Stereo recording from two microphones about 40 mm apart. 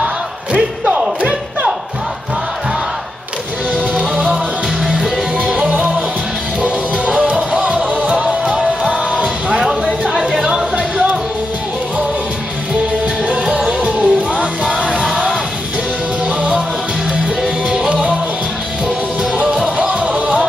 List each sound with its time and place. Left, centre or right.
4.8 s music: centre
6.6 s music: right
8.2 s music: centre
10.0 s a sound: centre
13.2 s music: right
17.6 s music: right
19.4 s music: centre
20.2 s music: right